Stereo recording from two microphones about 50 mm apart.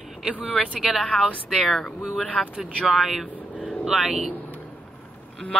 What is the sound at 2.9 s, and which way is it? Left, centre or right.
Speech, centre.